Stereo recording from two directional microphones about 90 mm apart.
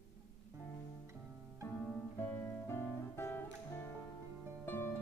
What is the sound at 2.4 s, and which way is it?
Music, 25° left (ahead or behind).